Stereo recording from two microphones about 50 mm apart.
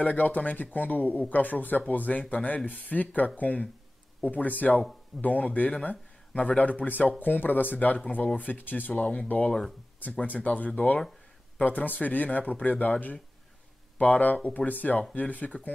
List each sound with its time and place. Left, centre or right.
0.0 s speech: left
9.5 s speech: centre
10.2 s speech: left